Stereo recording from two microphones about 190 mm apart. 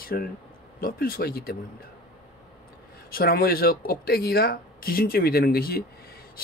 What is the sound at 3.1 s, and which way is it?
Speech, 55° left (ahead or behind).